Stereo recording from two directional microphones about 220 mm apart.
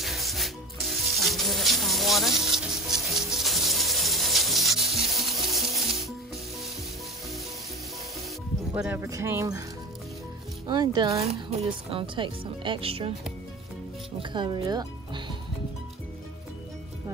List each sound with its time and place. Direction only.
0.0 s music: centre (ahead or behind)
8.7 s speech: 10° right (ahead or behind)
10.7 s speech: 20° right (ahead or behind)
14.3 s speech: 20° right (ahead or behind)